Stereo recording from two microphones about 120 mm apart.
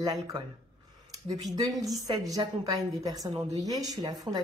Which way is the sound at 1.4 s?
30° right (ahead or behind).